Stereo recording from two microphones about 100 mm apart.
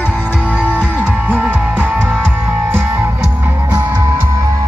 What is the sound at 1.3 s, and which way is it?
Music, 15° right (ahead or behind).